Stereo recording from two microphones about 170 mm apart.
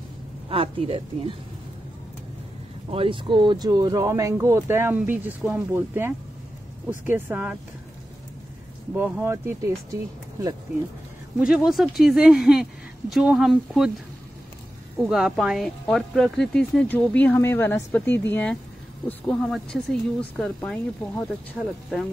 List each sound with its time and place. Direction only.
0.5 s speech: 35° right (ahead or behind)
2.9 s speech: 30° right (ahead or behind); by 7.5 s 10° right (ahead or behind)
8.9 s speech: 10° right (ahead or behind)
11.3 s speech: 5° right (ahead or behind)
15.0 s speech: centre (ahead or behind)